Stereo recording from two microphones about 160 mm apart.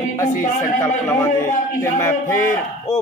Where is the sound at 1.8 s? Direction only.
15° left (ahead or behind).